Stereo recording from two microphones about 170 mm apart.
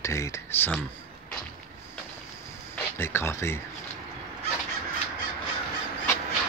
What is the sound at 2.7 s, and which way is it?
Speech, 15° left (ahead or behind).